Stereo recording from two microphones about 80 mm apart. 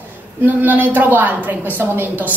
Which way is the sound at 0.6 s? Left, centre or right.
Right.